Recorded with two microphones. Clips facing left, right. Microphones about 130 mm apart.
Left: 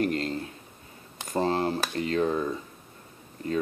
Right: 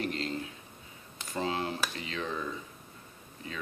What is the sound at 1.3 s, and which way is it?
Speech, 45° left (ahead or behind).